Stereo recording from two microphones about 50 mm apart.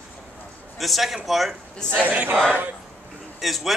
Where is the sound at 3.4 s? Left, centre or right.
Centre.